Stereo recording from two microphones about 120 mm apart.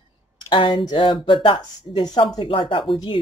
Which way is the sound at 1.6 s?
35° left (ahead or behind).